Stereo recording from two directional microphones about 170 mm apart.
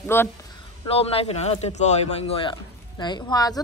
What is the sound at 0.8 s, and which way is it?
Speech, 35° left (ahead or behind).